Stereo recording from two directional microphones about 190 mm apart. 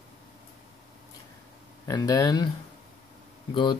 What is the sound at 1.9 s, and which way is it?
Speech, 20° left (ahead or behind).